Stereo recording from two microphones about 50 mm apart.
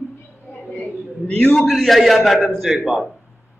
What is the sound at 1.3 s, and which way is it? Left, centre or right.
Speech, centre.